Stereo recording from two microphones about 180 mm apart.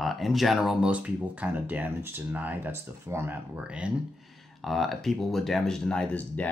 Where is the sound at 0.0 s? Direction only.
Centre (ahead or behind).